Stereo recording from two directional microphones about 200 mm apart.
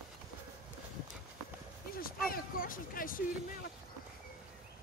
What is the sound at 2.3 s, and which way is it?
Speech, 45° left (ahead or behind).